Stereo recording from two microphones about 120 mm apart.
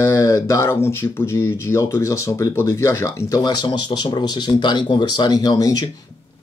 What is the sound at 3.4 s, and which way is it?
Speech, 40° left (ahead or behind).